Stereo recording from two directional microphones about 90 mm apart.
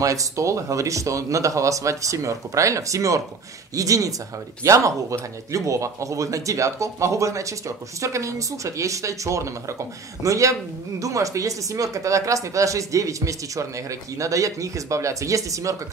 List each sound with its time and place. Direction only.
0.0 s speech: 40° right (ahead or behind)